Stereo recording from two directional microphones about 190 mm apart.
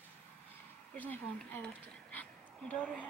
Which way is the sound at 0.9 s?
10° left (ahead or behind).